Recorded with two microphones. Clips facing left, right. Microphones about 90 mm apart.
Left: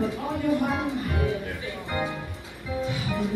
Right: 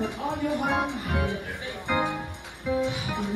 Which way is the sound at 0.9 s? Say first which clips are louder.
Left 2 dB; 70° right (ahead or behind).